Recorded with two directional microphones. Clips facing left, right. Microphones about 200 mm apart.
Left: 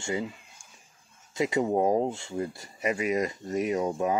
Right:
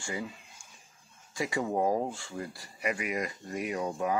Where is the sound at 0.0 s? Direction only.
20° left (ahead or behind).